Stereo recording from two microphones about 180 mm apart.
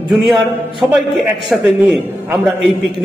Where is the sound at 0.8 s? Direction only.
10° right (ahead or behind).